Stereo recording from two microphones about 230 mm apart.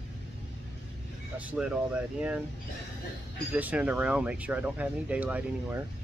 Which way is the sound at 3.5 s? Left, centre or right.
Centre.